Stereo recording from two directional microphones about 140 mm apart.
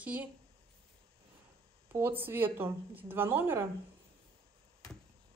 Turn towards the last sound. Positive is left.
turn(degrees=-15)  # may be behind; listen again after turning